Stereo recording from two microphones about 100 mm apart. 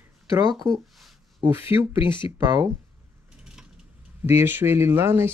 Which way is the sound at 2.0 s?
55° left (ahead or behind).